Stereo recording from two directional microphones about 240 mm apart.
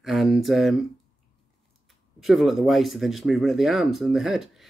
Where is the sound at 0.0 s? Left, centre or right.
Centre.